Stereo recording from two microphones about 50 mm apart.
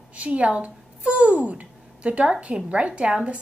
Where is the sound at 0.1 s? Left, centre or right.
Right.